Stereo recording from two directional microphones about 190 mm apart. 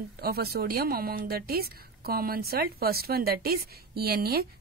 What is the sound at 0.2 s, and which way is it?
A woman's voice, 55° right (ahead or behind).